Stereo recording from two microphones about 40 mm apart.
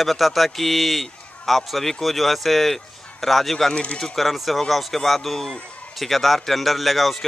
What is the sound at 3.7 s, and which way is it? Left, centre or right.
Speech, left.